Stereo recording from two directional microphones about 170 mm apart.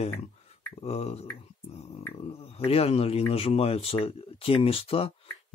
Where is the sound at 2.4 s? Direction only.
35° left (ahead or behind).